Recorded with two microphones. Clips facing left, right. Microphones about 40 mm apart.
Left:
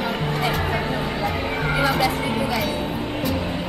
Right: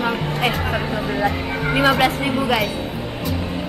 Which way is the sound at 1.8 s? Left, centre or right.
Right.